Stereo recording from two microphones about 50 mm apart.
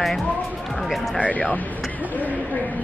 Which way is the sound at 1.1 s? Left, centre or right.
Left.